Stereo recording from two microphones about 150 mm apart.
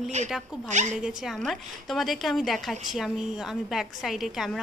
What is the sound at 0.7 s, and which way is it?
Speech, 50° right (ahead or behind).